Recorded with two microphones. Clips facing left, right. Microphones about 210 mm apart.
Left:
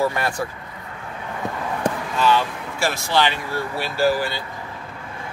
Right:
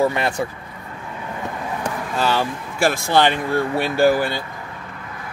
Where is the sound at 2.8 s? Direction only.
55° right (ahead or behind).